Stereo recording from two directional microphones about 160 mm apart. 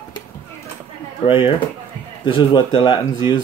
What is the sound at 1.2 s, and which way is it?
A man's voice, 30° left (ahead or behind).